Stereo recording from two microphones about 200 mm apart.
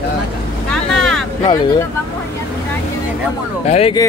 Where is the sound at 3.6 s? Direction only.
30° left (ahead or behind).